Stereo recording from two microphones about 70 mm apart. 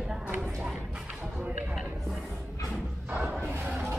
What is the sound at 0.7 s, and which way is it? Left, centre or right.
Speech, right.